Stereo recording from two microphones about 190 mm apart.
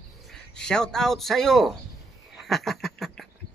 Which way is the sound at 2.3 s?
Centre (ahead or behind).